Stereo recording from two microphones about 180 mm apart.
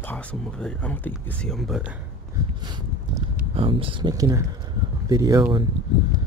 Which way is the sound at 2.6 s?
25° right (ahead or behind).